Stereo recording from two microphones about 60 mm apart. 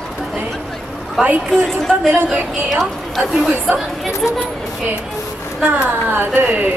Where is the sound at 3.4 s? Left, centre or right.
Right.